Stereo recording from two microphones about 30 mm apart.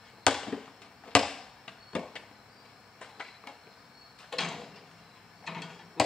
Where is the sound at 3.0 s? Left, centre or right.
Left.